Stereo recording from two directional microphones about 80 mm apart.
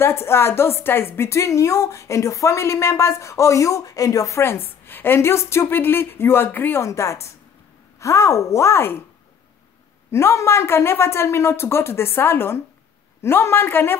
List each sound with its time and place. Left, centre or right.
0.0 s a woman's voice: left
6.8 s a woman's voice: left
10.1 s a woman's voice: left